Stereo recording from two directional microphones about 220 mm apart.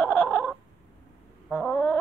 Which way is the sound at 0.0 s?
5° left (ahead or behind).